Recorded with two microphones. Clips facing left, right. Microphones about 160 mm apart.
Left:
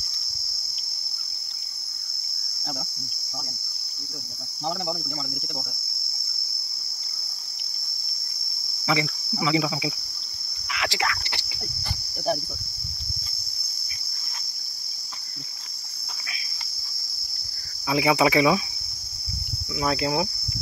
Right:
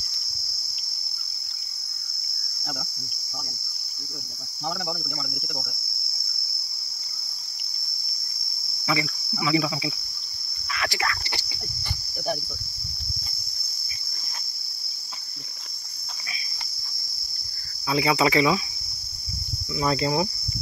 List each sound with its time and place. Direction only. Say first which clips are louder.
8.8 s cricket: left 2 dB; 20° left (ahead or behind)
17.8 s cricket: left 1 dB; 15° left (ahead or behind)
19.8 s cricket: right 1 dB; 5° left (ahead or behind)